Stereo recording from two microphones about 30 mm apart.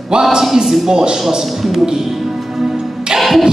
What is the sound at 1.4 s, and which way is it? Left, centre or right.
Speech, centre.